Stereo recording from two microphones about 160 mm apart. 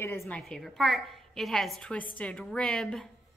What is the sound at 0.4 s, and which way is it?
A woman's voice, centre (ahead or behind).